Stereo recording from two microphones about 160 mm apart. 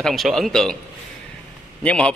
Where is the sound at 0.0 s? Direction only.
Centre (ahead or behind).